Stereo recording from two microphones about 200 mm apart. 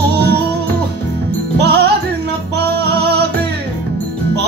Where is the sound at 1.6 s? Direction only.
55° right (ahead or behind).